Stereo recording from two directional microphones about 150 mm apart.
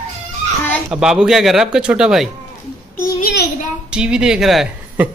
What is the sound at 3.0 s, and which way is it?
Child singing, 85° left.